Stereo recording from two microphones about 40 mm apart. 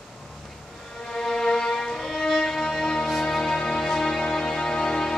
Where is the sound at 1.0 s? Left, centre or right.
Centre.